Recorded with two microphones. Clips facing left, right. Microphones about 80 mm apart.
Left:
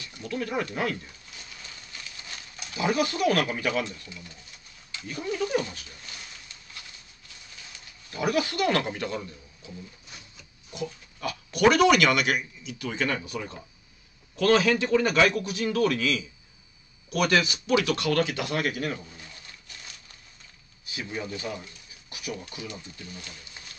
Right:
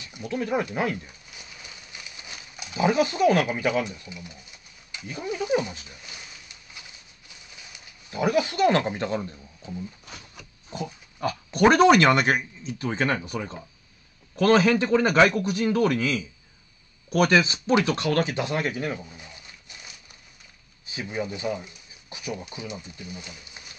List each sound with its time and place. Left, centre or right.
0.0 s a sound: centre
10.7 s pig: centre
11.1 s speech: right
14.3 s speech: right
17.3 s speech: right